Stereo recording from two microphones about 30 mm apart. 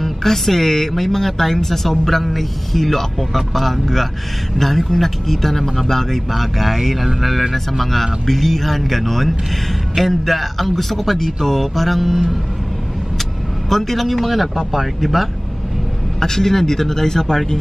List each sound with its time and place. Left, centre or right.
0.0 s speech: centre
13.7 s speech: centre
16.2 s speech: centre